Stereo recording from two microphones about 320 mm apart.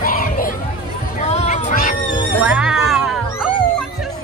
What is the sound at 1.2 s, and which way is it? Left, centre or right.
Music, centre.